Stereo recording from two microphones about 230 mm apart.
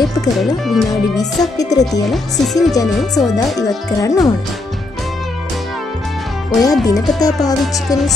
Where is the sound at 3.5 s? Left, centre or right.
Centre.